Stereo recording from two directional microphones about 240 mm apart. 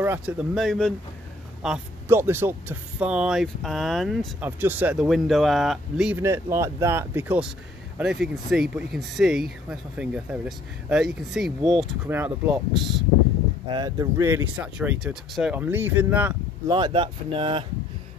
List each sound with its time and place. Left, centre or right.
0.0 s speech: centre
13.7 s speech: centre
16.6 s speech: centre